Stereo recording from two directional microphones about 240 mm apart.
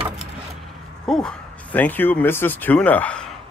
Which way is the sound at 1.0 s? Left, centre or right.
Centre.